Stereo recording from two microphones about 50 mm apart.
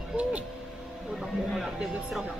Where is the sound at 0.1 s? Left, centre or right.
Right.